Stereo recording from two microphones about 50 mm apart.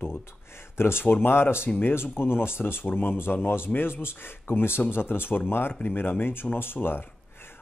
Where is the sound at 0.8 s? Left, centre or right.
Left.